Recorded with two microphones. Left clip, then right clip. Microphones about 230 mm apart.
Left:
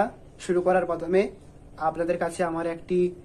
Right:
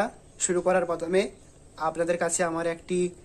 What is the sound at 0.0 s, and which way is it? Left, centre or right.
Speech, right.